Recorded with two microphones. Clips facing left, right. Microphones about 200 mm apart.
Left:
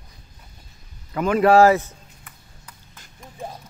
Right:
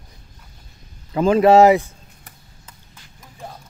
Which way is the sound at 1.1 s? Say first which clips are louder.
Right 3 dB; 25° right (ahead or behind).